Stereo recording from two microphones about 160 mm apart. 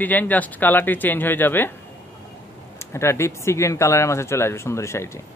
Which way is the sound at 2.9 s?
15° left (ahead or behind).